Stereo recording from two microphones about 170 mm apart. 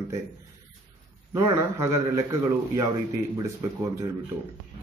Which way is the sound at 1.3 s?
15° right (ahead or behind).